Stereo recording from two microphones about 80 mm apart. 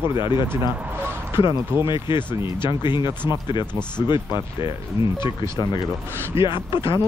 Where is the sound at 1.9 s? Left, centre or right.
Left.